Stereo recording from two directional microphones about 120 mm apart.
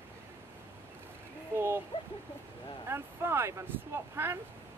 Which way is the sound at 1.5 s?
20° right (ahead or behind).